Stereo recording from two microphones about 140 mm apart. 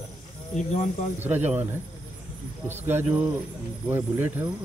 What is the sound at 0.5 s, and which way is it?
Speech, 60° left (ahead or behind).